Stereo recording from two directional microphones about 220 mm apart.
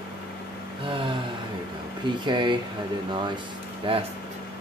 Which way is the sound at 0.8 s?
25° right (ahead or behind).